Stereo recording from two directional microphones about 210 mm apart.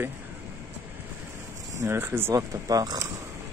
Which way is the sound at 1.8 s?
10° right (ahead or behind).